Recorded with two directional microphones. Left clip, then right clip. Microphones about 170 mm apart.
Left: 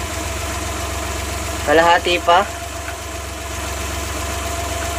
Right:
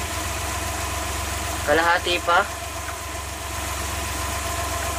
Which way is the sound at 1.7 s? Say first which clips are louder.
Left 6 dB; 25° left (ahead or behind).